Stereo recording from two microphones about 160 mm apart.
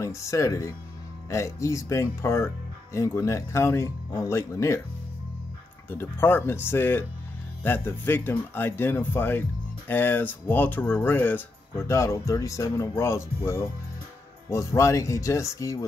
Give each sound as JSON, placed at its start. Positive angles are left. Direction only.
{"t": 0.0, "sound": "speech", "side_deg": 20}
{"t": 5.9, "sound": "speech", "side_deg": 15}